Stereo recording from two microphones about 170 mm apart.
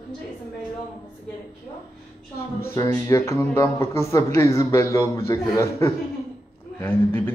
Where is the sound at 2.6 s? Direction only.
20° left (ahead or behind).